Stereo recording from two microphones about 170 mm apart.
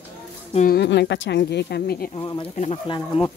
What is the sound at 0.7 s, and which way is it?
Speech, 80° left.